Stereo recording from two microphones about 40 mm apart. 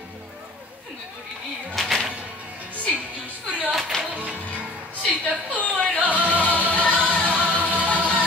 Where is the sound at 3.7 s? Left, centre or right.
Centre.